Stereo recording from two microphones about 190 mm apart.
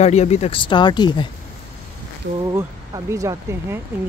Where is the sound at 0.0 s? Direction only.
35° left (ahead or behind).